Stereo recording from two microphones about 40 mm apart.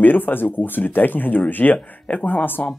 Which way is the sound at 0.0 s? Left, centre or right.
Left.